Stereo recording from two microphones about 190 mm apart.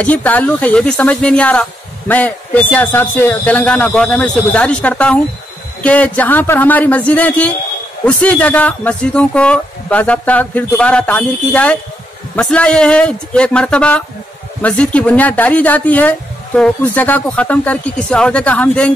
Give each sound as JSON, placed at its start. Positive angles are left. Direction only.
{"t": 0.0, "sound": "speech", "side_deg": 10}